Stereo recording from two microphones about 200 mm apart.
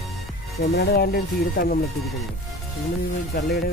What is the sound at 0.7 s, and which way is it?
Speech, 50° left (ahead or behind).